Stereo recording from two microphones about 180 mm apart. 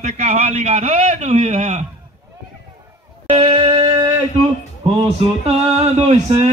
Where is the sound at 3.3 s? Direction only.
30° right (ahead or behind).